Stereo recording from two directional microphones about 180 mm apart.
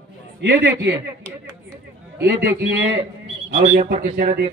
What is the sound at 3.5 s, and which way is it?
Speech, 40° right (ahead or behind).